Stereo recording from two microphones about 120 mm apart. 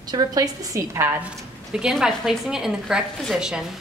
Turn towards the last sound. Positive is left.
turn(degrees=-5)  # may be behind; listen again after turning